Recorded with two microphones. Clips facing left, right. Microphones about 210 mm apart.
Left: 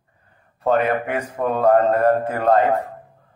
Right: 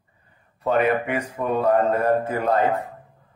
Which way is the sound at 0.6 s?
50° left (ahead or behind).